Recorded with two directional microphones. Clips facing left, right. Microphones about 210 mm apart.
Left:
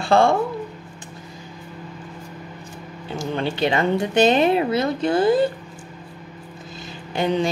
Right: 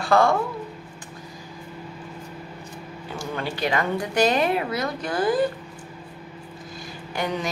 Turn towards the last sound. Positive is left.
turn(degrees=25)  # may be behind; listen again after turning